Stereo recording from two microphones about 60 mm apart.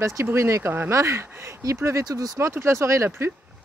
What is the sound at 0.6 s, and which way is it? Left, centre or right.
Speech, right.